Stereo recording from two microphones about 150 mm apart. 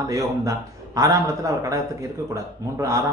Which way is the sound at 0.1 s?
25° right (ahead or behind).